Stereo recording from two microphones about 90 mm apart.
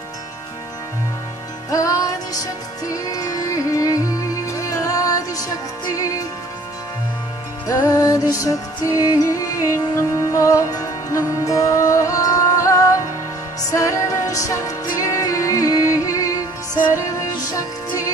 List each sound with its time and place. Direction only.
1.7 s music: 40° left (ahead or behind)
7.6 s music: 35° left (ahead or behind)